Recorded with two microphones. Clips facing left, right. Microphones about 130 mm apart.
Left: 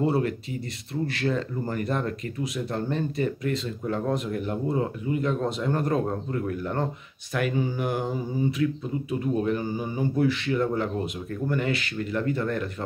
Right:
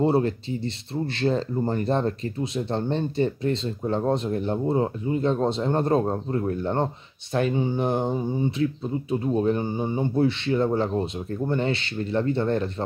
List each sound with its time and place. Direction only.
0.0 s speech: 30° right (ahead or behind)